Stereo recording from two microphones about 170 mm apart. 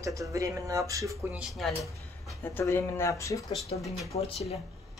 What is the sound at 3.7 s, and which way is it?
Speech, 35° left (ahead or behind).